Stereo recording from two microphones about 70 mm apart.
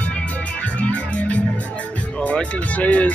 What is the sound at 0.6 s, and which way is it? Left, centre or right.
Music, centre.